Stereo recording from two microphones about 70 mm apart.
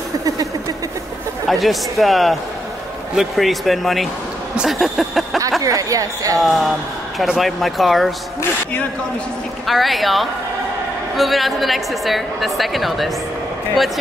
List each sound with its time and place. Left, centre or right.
1.5 s a woman's voice: centre
5.6 s speech: right
6.4 s a woman's voice: centre
9.7 s a woman's voice: centre